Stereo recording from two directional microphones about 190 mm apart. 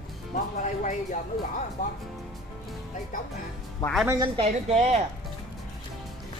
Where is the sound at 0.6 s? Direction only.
40° left (ahead or behind).